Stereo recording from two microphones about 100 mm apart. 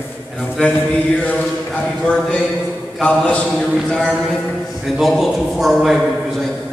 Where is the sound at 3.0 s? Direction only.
15° left (ahead or behind).